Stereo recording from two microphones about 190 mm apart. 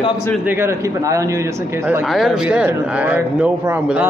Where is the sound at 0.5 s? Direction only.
15° right (ahead or behind).